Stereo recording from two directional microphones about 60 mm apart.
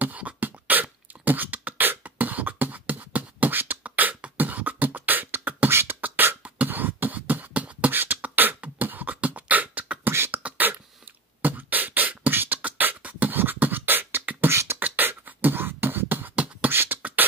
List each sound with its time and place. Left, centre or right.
0.0 s beatboxing: right
5.7 s beatboxing: right
10.1 s beatboxing: right
10.4 s beatboxing: right
14.5 s beatboxing: right
14.8 s beatboxing: right